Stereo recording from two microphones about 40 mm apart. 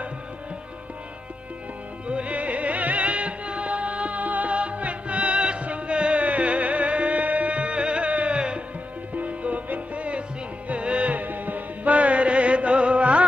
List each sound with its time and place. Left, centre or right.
2.0 s music: right
9.1 s music: right